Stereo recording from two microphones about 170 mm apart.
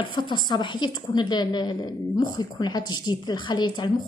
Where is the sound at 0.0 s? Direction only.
25° left (ahead or behind).